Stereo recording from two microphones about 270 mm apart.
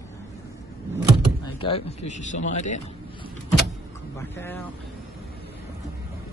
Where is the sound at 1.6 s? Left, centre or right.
Left.